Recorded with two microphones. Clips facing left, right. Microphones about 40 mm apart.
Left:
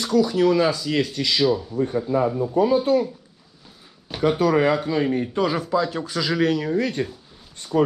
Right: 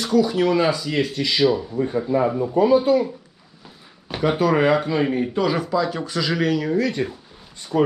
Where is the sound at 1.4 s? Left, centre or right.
Right.